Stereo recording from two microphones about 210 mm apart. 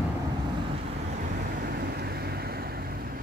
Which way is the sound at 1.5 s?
45° right (ahead or behind).